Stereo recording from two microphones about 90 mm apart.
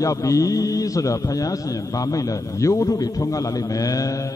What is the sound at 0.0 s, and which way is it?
A man's voice, 40° left (ahead or behind).